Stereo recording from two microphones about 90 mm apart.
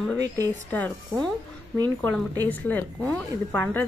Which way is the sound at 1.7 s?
45° right (ahead or behind).